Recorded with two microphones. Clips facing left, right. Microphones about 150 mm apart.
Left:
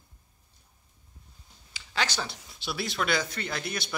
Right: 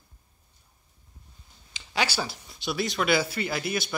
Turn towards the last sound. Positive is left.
turn(degrees=-5)  # may be behind; listen again after turning